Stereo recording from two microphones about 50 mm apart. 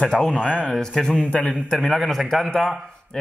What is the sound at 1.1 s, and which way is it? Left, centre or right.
Speech, centre.